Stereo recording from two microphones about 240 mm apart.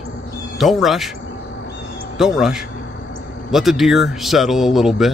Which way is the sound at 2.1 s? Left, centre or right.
Centre.